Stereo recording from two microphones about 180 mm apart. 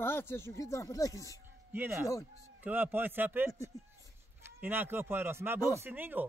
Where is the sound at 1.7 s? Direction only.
10° right (ahead or behind).